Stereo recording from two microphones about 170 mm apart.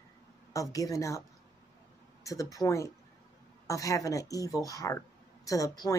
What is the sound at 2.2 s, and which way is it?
Speech, 20° left (ahead or behind).